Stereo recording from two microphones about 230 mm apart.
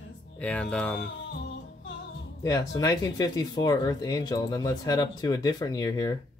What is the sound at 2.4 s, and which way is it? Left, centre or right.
Speech, centre.